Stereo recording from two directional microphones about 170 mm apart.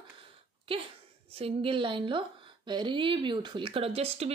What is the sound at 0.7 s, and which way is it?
Speech, 30° right (ahead or behind).